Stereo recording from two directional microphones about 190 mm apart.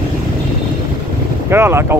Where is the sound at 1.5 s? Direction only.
15° right (ahead or behind).